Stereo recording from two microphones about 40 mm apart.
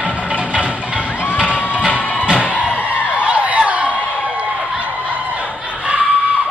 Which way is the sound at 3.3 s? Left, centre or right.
Right.